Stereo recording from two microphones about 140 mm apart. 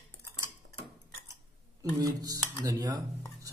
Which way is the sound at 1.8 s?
25° right (ahead or behind).